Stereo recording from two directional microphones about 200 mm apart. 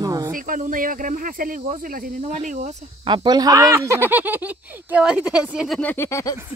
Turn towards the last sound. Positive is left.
turn(degrees=15)  # may be behind; listen again after turning